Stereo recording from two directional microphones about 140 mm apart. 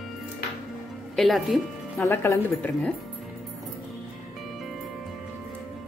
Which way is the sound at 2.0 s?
20° left (ahead or behind).